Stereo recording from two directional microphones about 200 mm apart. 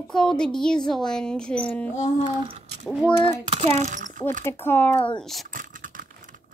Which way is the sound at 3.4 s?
35° right (ahead or behind).